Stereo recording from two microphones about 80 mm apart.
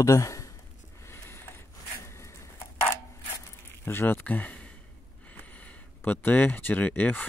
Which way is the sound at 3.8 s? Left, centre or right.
Left.